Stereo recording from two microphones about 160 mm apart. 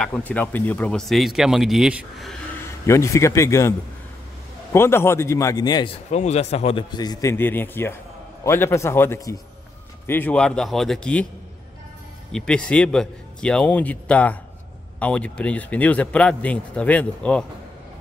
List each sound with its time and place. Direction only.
0.0 s speech: 10° left (ahead or behind)
2.9 s a man's voice: 20° left (ahead or behind)
4.7 s a man's voice: 15° left (ahead or behind)
6.1 s a man's voice: 45° left (ahead or behind); by 11.2 s 5° left (ahead or behind)
12.3 s a man's voice: 5° left (ahead or behind)